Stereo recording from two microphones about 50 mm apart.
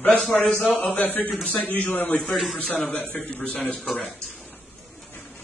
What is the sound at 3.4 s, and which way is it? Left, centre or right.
Speech, left.